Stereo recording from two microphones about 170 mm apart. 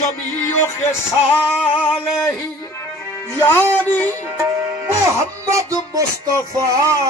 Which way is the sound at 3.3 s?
15° left (ahead or behind).